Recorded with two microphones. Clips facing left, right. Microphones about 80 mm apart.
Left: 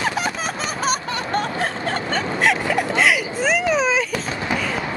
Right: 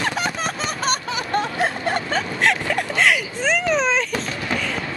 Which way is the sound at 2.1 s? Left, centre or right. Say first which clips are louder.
Left 3 dB; centre.